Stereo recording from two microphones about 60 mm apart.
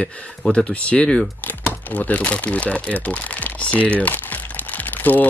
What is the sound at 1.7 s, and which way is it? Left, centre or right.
Speech, left.